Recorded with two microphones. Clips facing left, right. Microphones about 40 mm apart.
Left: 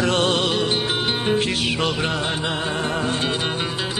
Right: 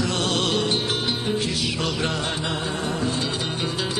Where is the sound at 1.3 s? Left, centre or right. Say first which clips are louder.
Left 4 dB; left.